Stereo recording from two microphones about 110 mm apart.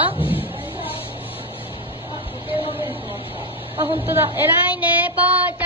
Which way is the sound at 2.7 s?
20° right (ahead or behind).